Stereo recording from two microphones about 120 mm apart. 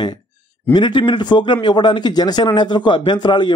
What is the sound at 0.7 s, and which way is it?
A man's voice, 40° left (ahead or behind).